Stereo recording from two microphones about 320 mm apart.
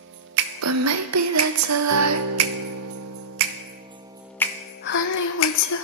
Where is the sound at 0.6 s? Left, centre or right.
Right.